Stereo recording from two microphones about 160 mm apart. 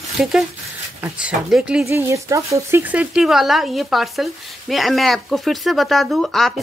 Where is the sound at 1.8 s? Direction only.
20° right (ahead or behind).